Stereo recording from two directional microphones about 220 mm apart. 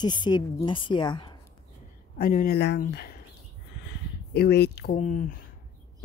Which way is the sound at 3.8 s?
50° left (ahead or behind).